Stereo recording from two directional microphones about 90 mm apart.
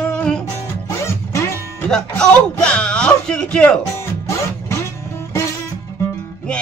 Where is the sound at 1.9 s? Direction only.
5° left (ahead or behind).